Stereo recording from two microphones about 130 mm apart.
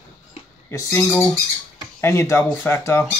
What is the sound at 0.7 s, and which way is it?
Speech, 25° left (ahead or behind).